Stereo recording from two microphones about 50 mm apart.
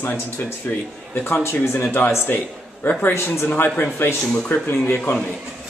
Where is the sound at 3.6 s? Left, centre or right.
Left.